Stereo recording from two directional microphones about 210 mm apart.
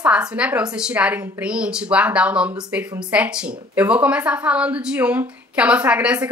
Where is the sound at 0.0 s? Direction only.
5° right (ahead or behind).